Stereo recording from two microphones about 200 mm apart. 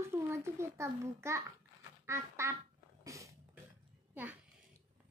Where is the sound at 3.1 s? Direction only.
15° right (ahead or behind).